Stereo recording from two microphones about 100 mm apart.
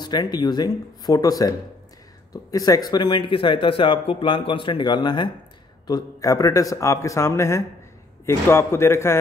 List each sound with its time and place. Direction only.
0.0 s speech: 45° left (ahead or behind)
5.9 s a man's voice: 40° left (ahead or behind)